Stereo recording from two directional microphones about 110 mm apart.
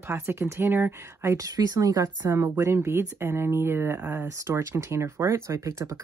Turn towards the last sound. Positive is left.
turn(degrees=-30)  # may be behind; listen again after turning